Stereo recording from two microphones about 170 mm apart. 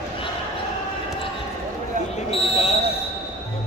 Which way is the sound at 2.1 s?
40° left (ahead or behind).